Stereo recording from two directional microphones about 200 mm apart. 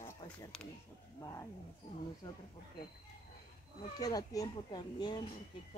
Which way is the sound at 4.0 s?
20° left (ahead or behind).